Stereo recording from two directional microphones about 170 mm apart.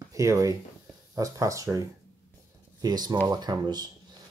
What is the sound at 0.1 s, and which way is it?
Speech, 20° right (ahead or behind).